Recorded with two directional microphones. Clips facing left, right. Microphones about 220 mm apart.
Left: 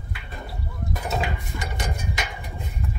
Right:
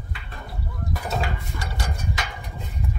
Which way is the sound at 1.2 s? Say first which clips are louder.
Left 1 dB; 20° left (ahead or behind).